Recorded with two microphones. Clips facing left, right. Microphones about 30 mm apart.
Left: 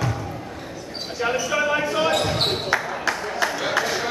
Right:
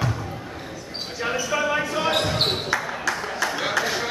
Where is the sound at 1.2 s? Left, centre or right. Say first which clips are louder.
Left 2 dB; centre.